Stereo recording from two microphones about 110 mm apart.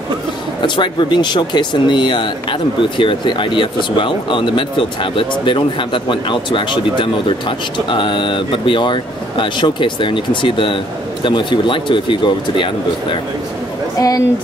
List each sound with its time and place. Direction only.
0.6 s speech: 45° left (ahead or behind)
13.9 s speech: 30° left (ahead or behind)